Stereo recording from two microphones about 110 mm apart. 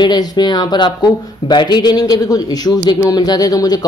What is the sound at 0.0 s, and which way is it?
Speech, 40° left (ahead or behind).